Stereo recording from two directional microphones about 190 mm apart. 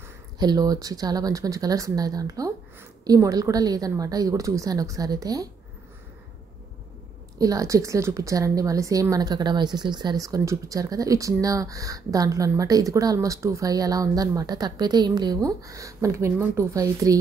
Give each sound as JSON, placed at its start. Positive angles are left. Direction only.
{"t": 0.4, "sound": "a woman's voice", "side_deg": -20}
{"t": 7.3, "sound": "a woman's voice", "side_deg": -20}